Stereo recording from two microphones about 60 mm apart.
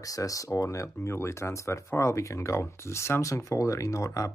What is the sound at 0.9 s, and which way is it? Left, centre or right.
Speech, left.